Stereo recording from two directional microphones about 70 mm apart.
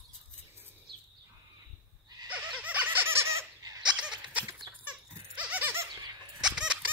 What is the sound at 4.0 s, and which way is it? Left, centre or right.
Goat, centre.